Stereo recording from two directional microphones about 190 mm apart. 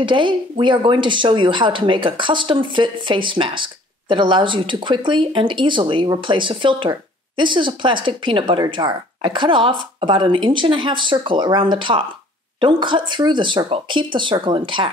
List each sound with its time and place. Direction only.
0.0 s speech: 25° right (ahead or behind)